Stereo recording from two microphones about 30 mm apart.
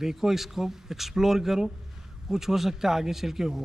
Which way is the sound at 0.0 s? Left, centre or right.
Centre.